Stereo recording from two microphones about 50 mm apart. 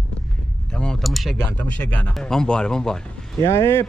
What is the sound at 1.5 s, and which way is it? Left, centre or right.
Speech, left.